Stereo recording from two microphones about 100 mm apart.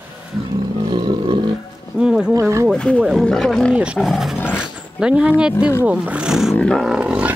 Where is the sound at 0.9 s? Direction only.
50° right (ahead or behind).